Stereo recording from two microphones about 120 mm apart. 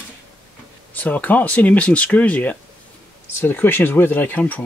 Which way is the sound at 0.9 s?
15° left (ahead or behind).